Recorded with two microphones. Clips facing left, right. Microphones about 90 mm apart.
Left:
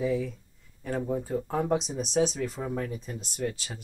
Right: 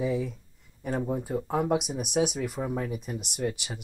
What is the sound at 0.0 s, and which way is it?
Speech, 15° right (ahead or behind).